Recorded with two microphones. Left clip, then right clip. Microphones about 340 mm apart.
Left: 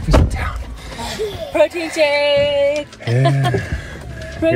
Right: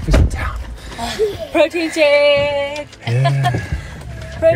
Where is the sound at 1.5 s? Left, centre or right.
Right.